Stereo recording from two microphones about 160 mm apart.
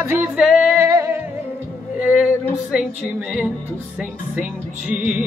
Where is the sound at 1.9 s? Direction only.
10° right (ahead or behind).